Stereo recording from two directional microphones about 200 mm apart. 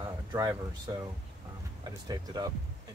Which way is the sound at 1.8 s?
20° right (ahead or behind).